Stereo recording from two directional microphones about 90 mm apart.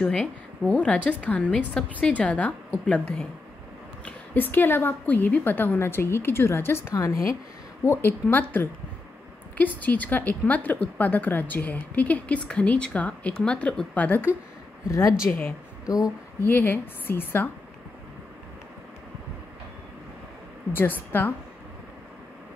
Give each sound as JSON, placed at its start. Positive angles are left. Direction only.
{"t": 0.0, "sound": "a woman's voice", "side_deg": 15}
{"t": 7.8, "sound": "a woman's voice", "side_deg": 25}
{"t": 9.8, "sound": "a woman's voice", "side_deg": 20}
{"t": 14.9, "sound": "speech", "side_deg": 40}
{"t": 15.8, "sound": "a sound", "side_deg": 45}
{"t": 16.4, "sound": "a woman's voice", "side_deg": 25}
{"t": 20.7, "sound": "a woman's voice", "side_deg": 25}